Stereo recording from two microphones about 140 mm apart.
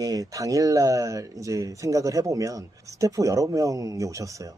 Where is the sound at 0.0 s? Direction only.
25° right (ahead or behind).